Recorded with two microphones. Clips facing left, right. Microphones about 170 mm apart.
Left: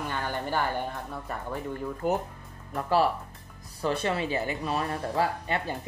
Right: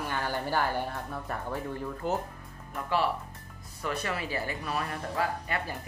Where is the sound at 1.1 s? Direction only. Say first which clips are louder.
Even; 5° left (ahead or behind).